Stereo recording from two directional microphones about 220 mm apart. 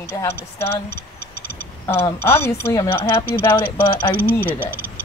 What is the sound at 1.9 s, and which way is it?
Speech, 10° left (ahead or behind).